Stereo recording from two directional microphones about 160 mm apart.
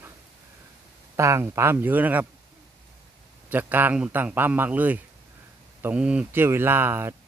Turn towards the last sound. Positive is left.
turn(degrees=-15)  # may be behind; listen again after turning